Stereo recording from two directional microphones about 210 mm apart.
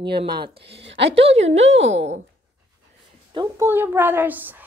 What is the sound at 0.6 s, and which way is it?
A woman's voice, 55° right (ahead or behind).